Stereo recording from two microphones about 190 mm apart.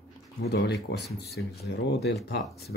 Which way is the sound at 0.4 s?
60° left (ahead or behind).